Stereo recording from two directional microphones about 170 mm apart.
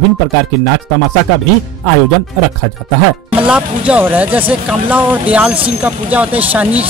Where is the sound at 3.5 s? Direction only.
10° right (ahead or behind).